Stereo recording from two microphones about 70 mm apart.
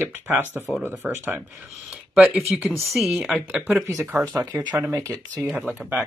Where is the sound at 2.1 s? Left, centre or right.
Centre.